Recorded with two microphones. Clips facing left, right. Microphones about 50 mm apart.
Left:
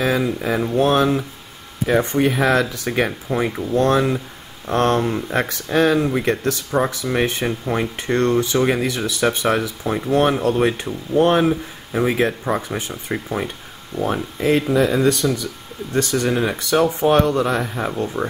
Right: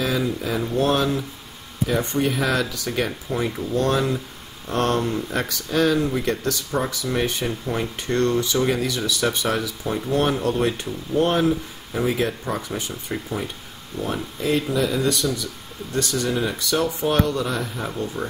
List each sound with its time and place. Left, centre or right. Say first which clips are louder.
0.0 s speech: left 4 dB; left